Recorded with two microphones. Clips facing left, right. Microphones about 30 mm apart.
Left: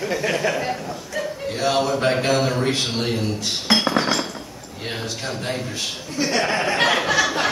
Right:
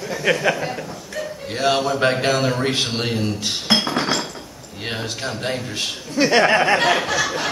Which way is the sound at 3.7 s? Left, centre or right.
Centre.